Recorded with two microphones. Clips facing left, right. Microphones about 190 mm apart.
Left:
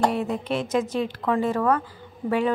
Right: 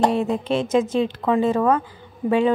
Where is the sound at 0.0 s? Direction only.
25° right (ahead or behind).